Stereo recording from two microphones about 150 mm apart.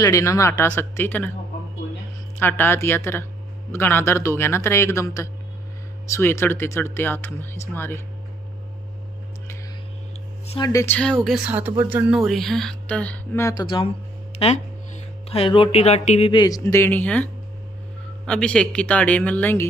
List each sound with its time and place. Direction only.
0.0 s speech: 20° left (ahead or behind)
2.3 s speech: 15° left (ahead or behind)
10.6 s speech: 20° left (ahead or behind)
11.0 s speech: 5° left (ahead or behind)
13.4 s speech: 25° left (ahead or behind)
14.3 s a sound: 45° left (ahead or behind)
16.3 s speech: 25° left (ahead or behind)